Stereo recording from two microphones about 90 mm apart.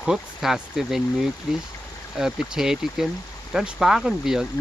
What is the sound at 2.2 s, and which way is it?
Speech, 5° right (ahead or behind).